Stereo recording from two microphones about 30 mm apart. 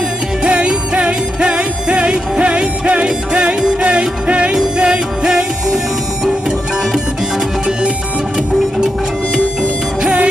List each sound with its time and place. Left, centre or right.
0.4 s music: right